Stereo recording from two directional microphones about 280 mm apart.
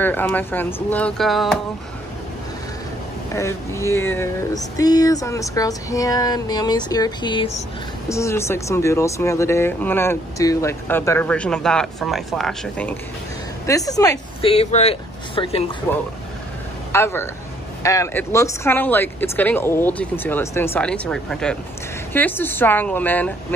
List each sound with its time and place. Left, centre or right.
0.0 s speech: centre
3.3 s speech: centre
15.9 s speech: centre